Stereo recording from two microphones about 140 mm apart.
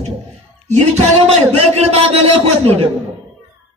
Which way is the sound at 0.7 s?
50° right (ahead or behind).